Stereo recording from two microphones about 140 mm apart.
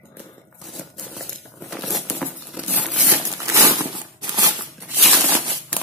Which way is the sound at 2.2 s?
10° right (ahead or behind).